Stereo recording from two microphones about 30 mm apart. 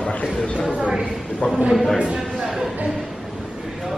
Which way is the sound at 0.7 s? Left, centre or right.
Right.